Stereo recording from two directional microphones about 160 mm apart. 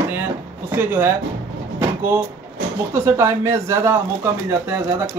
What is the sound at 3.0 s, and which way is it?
A man's voice, 15° right (ahead or behind).